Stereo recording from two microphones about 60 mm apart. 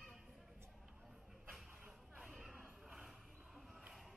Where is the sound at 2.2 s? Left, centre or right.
Centre.